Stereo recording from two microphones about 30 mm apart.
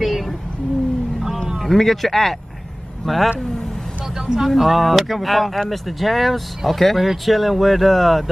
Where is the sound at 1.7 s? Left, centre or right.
Centre.